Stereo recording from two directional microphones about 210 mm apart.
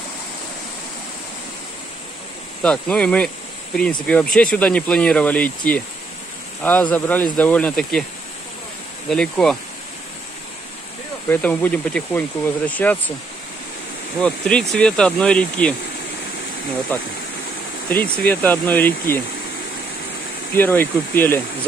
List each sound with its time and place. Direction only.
2.6 s speech: 5° left (ahead or behind)
9.1 s speech: 5° left (ahead or behind)
11.2 s speech: 10° left (ahead or behind)
14.2 s speech: 5° left (ahead or behind)
17.8 s speech: 5° left (ahead or behind)
20.5 s speech: 10° left (ahead or behind)